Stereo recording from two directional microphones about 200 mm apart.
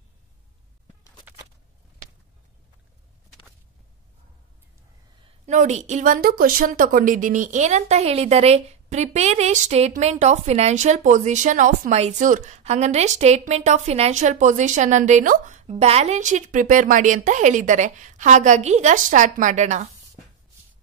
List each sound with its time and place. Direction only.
5.5 s a woman's voice: 35° right (ahead or behind)